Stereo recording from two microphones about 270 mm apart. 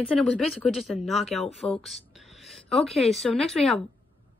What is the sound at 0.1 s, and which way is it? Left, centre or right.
A woman's voice, centre.